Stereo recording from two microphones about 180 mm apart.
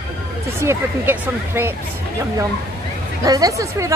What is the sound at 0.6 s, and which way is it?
Speech, 15° right (ahead or behind).